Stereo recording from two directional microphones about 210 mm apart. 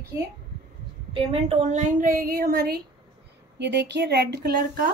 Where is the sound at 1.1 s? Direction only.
30° right (ahead or behind).